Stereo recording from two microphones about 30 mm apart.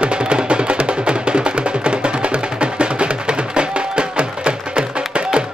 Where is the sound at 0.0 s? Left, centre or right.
Right.